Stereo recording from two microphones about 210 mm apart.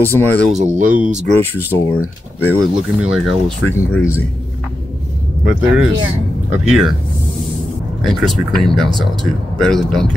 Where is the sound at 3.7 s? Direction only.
10° left (ahead or behind).